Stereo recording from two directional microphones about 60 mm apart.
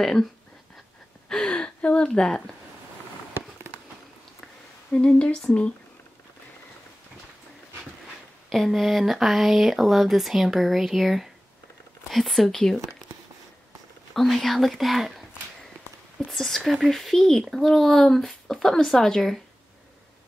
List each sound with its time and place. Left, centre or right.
0.0 s speech: centre
1.3 s gasp: centre
4.9 s speech: centre
8.5 s speech: centre
14.1 s speech: centre
16.3 s speech: centre